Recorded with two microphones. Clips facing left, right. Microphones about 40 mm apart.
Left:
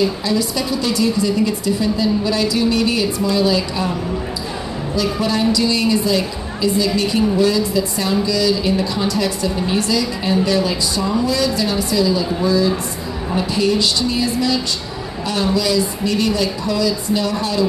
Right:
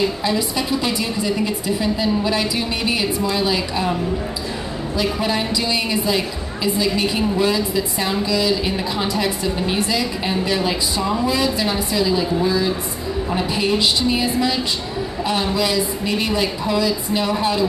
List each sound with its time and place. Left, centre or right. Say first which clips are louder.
0.2 s a woman's voice: left 1 dB; right
4.9 s a woman's voice: left 2 dB; right